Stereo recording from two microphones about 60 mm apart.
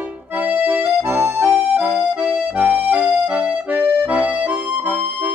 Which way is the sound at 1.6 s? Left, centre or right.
Right.